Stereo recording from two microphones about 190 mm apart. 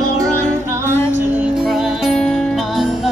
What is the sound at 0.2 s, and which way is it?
Music, 15° right (ahead or behind).